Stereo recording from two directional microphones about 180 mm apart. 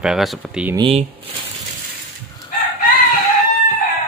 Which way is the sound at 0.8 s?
30° right (ahead or behind).